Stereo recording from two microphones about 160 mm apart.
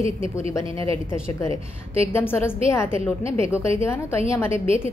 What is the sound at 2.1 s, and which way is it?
Speech, 15° left (ahead or behind).